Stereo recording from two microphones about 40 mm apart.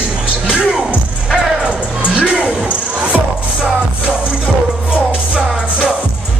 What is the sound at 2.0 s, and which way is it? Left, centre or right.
Music, right.